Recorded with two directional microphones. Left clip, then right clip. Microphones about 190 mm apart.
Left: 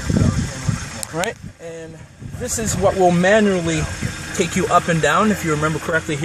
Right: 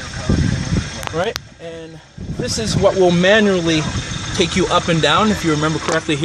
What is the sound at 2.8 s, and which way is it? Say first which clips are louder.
Speech: right 2 dB; centre (ahead or behind).